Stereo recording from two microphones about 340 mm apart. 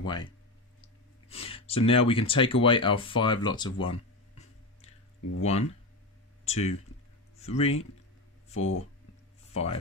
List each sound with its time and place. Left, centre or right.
0.0 s speech: centre
1.3 s speech: centre
3.8 s a sound: centre
5.4 s speech: centre
8.5 s speech: left
9.5 s speech: centre